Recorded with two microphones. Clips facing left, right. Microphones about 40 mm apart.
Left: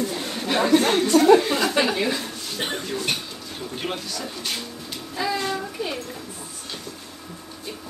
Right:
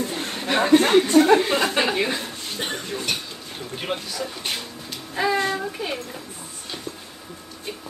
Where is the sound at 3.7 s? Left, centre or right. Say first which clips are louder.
Right 1 dB; centre.